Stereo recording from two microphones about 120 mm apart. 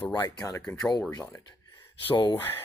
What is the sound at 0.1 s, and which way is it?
Speech, 35° left (ahead or behind).